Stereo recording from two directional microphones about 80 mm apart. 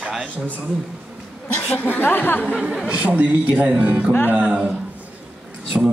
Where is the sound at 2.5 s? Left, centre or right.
Centre.